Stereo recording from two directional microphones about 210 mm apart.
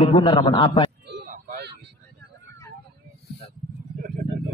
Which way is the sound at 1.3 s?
40° right (ahead or behind).